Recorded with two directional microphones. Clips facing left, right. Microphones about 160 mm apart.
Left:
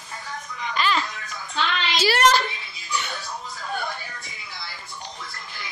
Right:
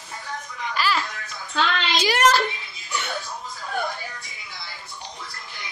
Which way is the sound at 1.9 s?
15° right (ahead or behind).